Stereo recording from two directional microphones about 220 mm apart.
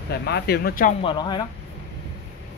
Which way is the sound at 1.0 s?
20° left (ahead or behind).